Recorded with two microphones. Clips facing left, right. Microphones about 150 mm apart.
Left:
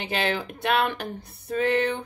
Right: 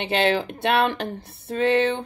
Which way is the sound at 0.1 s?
25° right (ahead or behind).